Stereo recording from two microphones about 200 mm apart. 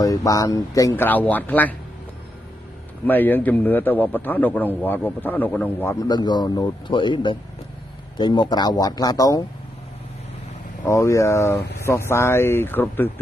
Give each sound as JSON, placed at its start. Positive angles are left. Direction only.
{"t": 0.0, "sound": "a man's voice", "side_deg": 15}
{"t": 3.1, "sound": "a man's voice", "side_deg": 10}
{"t": 10.8, "sound": "a man's voice", "side_deg": 15}